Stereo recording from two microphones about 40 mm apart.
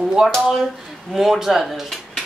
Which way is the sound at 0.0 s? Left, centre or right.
Centre.